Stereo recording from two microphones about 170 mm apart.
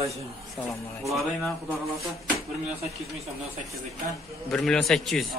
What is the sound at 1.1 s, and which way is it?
Speech, centre (ahead or behind).